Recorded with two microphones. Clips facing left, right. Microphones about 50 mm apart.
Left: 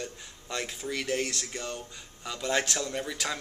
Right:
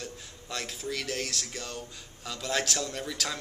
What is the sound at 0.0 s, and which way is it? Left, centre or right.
A man's voice, centre.